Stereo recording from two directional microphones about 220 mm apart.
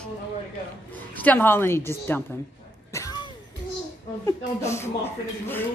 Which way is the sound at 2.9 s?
15° left (ahead or behind).